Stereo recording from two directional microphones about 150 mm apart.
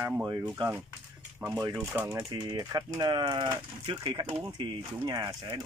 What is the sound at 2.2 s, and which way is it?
Speech, 30° right (ahead or behind).